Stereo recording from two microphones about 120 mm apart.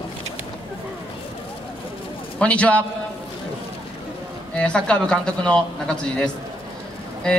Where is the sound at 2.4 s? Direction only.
10° left (ahead or behind).